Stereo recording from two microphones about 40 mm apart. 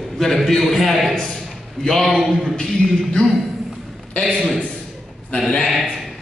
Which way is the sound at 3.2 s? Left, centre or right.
Left.